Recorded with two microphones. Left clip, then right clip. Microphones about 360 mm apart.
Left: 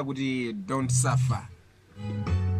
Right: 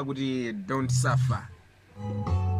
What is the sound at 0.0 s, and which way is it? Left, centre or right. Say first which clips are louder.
Speech: even; centre.